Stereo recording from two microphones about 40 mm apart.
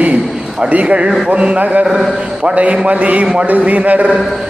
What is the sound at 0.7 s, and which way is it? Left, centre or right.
Speech, right.